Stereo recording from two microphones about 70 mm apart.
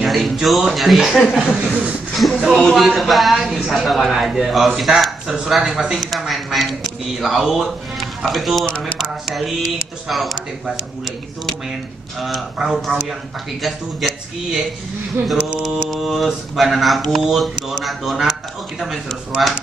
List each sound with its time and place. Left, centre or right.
0.0 s a man's voice: centre
1.7 s a sound: centre
2.1 s speech: centre
8.6 s speech: centre
10.0 s speech: centre
12.2 s speech: centre
15.9 s speech: centre
19.3 s speech: centre